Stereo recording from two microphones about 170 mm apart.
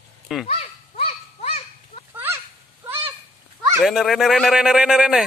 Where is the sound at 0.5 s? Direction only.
35° left (ahead or behind).